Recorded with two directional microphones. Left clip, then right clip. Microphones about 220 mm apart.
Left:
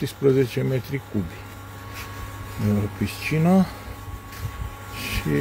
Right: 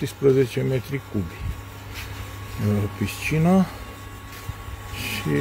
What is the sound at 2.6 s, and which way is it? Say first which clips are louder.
Speech: even; 5° right (ahead or behind).